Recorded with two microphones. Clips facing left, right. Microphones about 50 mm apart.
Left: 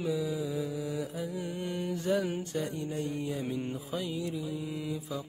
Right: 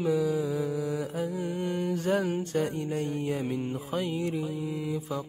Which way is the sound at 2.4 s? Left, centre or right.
Right.